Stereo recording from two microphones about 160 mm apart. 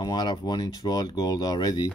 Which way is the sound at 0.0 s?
25° left (ahead or behind).